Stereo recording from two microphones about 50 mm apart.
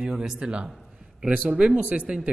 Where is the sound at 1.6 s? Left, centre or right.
Right.